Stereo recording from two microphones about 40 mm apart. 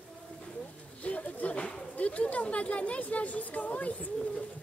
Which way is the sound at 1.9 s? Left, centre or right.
Left.